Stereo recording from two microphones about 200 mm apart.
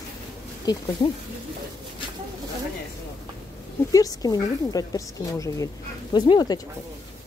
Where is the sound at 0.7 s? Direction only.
20° left (ahead or behind).